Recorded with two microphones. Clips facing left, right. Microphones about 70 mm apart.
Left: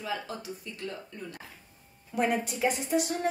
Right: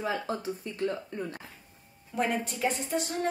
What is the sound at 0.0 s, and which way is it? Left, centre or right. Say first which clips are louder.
Speech: right 4 dB; right.